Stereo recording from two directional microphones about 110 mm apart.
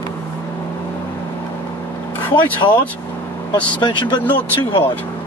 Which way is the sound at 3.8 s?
45° left (ahead or behind).